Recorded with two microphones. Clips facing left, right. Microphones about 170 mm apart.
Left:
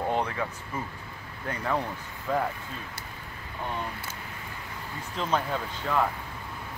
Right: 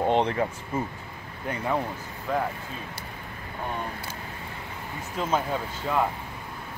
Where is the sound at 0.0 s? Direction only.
25° right (ahead or behind).